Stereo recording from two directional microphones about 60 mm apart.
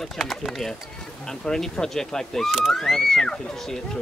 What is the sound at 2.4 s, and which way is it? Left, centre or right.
Speech, centre.